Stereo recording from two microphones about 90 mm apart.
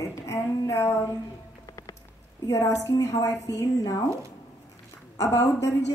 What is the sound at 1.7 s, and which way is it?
Music, 45° left (ahead or behind).